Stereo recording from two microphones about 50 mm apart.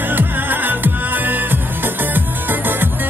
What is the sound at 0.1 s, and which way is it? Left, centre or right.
Music, right.